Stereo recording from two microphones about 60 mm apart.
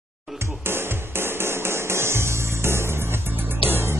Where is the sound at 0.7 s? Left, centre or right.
Right.